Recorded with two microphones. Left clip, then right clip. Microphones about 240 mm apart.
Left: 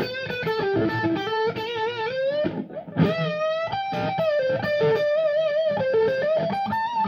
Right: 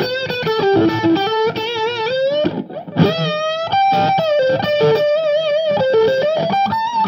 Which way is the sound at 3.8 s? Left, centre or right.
Right.